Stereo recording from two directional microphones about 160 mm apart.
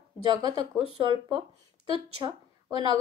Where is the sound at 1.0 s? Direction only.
30° right (ahead or behind).